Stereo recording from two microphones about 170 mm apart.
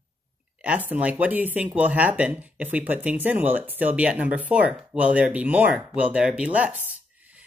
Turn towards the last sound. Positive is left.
turn(degrees=-10)  # may be behind; listen again after turning